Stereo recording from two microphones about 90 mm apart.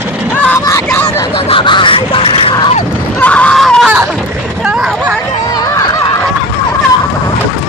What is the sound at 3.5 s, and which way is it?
Screaming, 5° left (ahead or behind).